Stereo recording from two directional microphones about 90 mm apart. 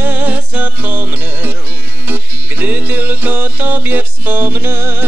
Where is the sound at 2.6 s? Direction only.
20° right (ahead or behind).